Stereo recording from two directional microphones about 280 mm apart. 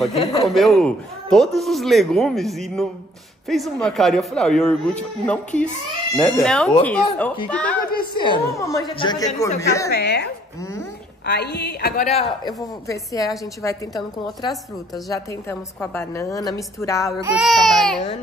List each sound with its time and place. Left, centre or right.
0.1 s speech: left
0.5 s speech: centre
8.1 s a woman's voice: centre
9.8 s a woman's voice: left
12.1 s a woman's voice: centre
17.4 s speech: centre